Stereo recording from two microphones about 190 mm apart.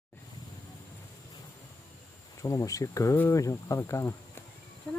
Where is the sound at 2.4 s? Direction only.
15° left (ahead or behind).